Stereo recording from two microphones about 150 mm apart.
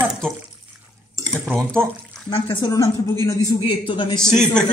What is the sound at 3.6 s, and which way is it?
Speech, 35° left (ahead or behind).